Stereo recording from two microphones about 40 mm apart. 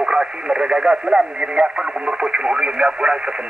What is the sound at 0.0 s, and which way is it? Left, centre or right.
Speech, right.